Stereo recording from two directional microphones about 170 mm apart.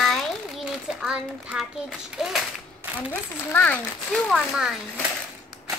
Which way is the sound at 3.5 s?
10° left (ahead or behind).